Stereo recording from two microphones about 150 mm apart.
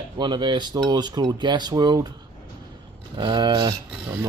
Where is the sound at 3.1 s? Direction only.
30° right (ahead or behind).